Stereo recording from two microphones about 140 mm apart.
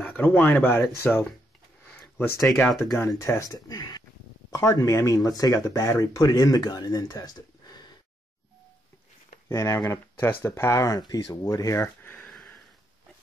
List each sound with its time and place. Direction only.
0.0 s speech: 15° left (ahead or behind); by 7.8 s 30° left (ahead or behind)
9.5 s speech: 20° left (ahead or behind)
12.3 s sniff: centre (ahead or behind)